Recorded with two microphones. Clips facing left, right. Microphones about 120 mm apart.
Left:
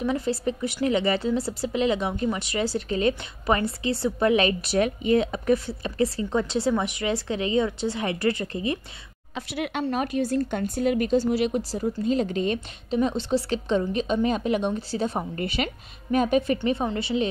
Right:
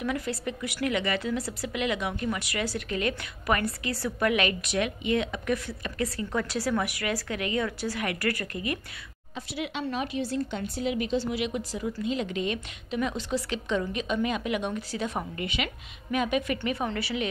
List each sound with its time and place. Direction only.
0.0 s speech: 30° left (ahead or behind)
9.3 s speech: 60° left (ahead or behind); by 17.3 s 25° left (ahead or behind)